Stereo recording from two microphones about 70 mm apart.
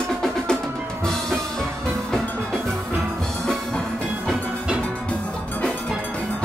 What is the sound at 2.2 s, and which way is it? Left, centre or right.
Music, centre.